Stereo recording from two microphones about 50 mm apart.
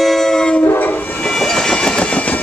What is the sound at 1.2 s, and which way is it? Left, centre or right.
Train, centre.